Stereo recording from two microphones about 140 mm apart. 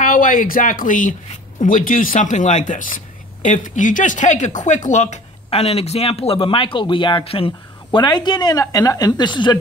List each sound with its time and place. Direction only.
0.0 s speech: 75° left (ahead or behind); by 9.6 s 30° left (ahead or behind)